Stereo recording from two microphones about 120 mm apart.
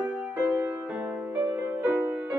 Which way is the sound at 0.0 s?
15° right (ahead or behind).